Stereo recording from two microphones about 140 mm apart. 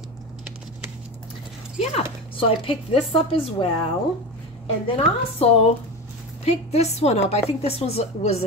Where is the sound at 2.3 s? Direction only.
40° left (ahead or behind).